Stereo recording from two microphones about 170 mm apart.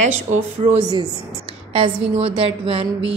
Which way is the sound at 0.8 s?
25° right (ahead or behind).